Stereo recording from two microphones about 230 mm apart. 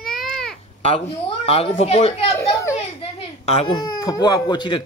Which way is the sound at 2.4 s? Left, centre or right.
Centre.